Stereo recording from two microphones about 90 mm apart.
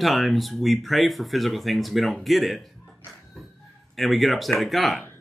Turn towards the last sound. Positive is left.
turn(degrees=0)  # may be behind; listen again after turning